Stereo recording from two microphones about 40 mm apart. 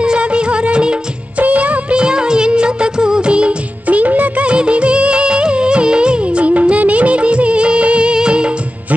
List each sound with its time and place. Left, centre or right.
0.0 s music: right
1.4 s music of bollywood: right
3.8 s music of bollywood: right
4.5 s music of bollywood: right